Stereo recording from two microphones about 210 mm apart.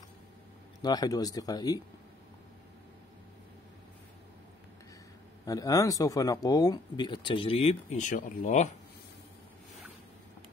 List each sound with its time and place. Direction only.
0.7 s speech: 20° left (ahead or behind)
5.4 s speech: 15° left (ahead or behind); by 8.6 s 40° left (ahead or behind)